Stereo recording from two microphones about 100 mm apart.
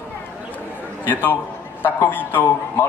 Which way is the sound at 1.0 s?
20° left (ahead or behind).